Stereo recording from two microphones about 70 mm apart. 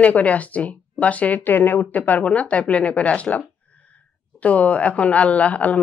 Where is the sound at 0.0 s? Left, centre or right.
Left.